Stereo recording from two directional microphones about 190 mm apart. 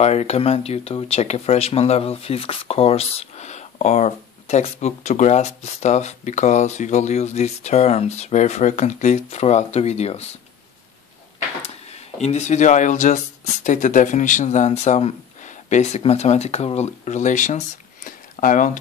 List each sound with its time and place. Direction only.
0.0 s speech: 35° left (ahead or behind)
12.2 s speech: 35° left (ahead or behind)